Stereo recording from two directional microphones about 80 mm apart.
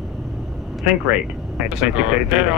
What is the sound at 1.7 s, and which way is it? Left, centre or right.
Speech, centre.